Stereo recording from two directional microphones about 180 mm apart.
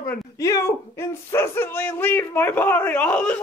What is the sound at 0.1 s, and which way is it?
Speech, 15° left (ahead or behind).